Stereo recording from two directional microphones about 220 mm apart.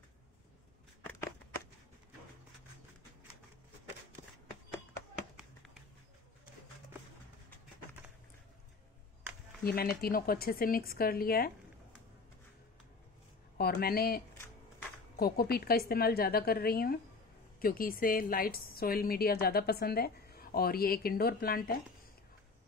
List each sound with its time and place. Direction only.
1.0 s a sound: 10° left (ahead or behind)
9.6 s a woman's voice: 45° left (ahead or behind)
13.6 s a woman's voice: 45° left (ahead or behind)